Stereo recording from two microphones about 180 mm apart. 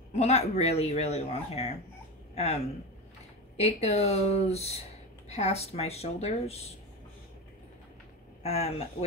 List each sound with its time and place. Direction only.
0.1 s speech: 35° left (ahead or behind)
8.4 s speech: 35° left (ahead or behind)